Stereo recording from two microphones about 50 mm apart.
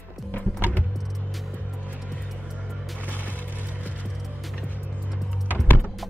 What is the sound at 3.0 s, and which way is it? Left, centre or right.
Music, left.